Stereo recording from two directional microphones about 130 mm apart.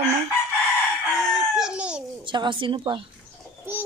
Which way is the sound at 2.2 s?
40° right (ahead or behind).